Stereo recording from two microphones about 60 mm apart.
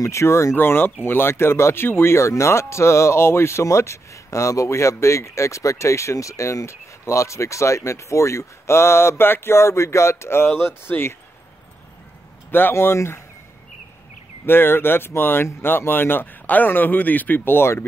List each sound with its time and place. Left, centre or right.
0.0 s speech: left
0.6 s speech: left
12.4 s speech: left
12.7 s speech: left
14.4 s speech: left